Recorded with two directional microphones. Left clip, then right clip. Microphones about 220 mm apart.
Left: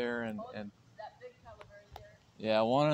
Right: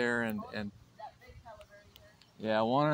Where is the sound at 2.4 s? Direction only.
5° right (ahead or behind).